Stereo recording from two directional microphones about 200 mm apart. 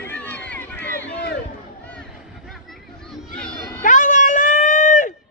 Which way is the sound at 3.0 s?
5° left (ahead or behind).